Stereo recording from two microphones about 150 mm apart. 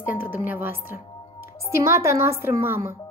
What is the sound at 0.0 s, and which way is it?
A woman's voice, 10° right (ahead or behind).